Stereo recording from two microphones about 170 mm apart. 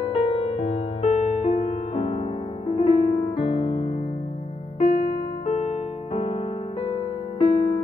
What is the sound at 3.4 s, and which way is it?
Music, 35° left (ahead or behind).